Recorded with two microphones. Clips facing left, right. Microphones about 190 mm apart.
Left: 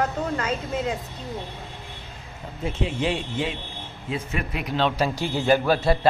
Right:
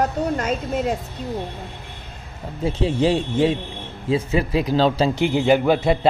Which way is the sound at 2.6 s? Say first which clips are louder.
Right 6 dB; 35° right (ahead or behind).